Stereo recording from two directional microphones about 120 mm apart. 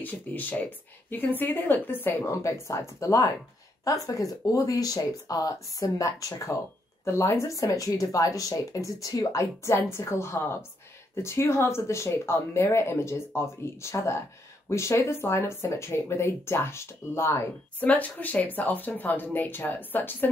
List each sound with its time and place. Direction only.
0.0 s speech: 15° left (ahead or behind)